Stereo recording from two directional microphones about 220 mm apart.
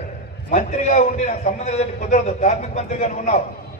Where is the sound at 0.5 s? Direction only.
35° left (ahead or behind).